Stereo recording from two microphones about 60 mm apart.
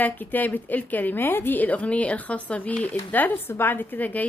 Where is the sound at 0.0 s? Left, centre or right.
Left.